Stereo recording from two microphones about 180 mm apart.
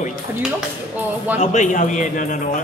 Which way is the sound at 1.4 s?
40° left (ahead or behind).